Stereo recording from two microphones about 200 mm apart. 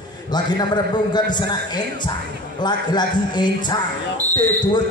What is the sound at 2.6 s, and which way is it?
A man's voice, 20° left (ahead or behind).